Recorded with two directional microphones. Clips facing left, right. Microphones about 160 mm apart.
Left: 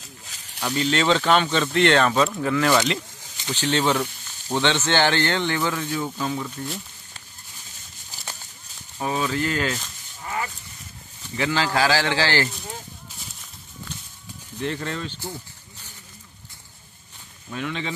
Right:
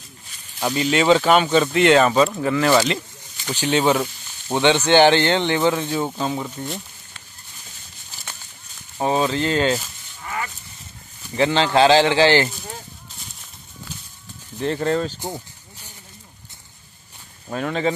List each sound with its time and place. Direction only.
0.7 s speech: 10° right (ahead or behind); by 6.5 s 30° right (ahead or behind)
9.0 s speech: 30° right (ahead or behind)
10.2 s livestock: 25° left (ahead or behind)
11.3 s speech: 30° right (ahead or behind)
14.6 s speech: 35° right (ahead or behind)
17.5 s speech: 45° right (ahead or behind)